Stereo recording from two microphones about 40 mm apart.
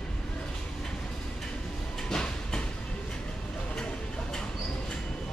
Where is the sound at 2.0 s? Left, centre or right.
Centre.